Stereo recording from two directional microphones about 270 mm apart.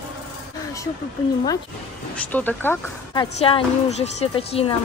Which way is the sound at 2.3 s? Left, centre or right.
Centre.